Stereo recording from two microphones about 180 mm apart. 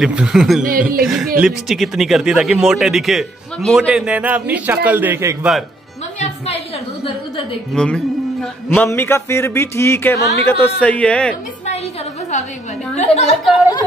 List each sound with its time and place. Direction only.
0.0 s speech: 5° right (ahead or behind)
0.7 s speech: 50° right (ahead or behind)
1.0 s a man's voice: centre (ahead or behind)
7.7 s speech: 5° left (ahead or behind)
12.9 s a woman's voice: 40° left (ahead or behind)